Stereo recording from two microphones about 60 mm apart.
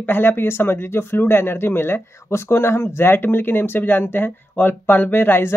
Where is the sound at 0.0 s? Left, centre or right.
Left.